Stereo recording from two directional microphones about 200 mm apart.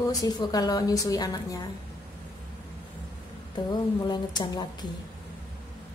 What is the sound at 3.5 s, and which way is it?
A woman's voice, 20° left (ahead or behind).